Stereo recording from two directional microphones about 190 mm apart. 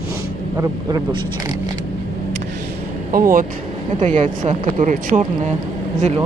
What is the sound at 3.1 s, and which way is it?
Speech, 50° right (ahead or behind).